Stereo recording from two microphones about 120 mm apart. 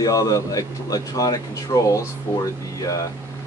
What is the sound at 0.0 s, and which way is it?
Speech, 30° left (ahead or behind).